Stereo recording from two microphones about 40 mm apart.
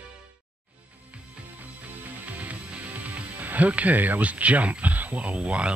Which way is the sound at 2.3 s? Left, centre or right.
Right.